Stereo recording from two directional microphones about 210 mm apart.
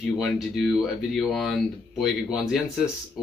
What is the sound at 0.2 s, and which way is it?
Speech, centre (ahead or behind).